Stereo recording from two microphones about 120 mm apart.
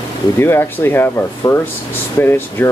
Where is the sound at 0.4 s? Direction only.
20° left (ahead or behind).